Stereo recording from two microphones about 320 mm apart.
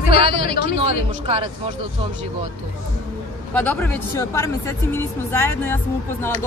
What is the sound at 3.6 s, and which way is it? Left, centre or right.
Speech, centre.